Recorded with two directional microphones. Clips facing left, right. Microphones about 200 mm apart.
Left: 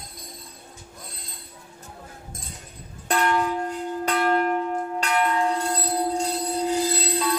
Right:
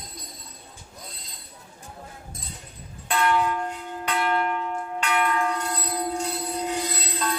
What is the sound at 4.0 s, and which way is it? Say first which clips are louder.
Church bell: left 3 dB; 40° left (ahead or behind).